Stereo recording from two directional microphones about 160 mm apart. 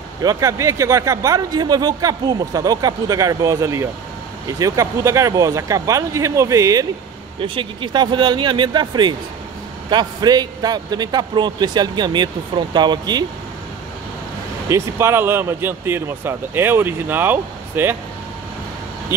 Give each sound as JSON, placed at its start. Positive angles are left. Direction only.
{"t": 0.2, "sound": "speech", "side_deg": -20}
{"t": 7.3, "sound": "speech", "side_deg": -35}
{"t": 14.7, "sound": "speech", "side_deg": -15}